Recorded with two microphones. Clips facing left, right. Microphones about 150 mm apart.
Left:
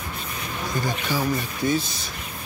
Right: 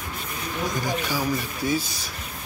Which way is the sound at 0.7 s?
10° right (ahead or behind).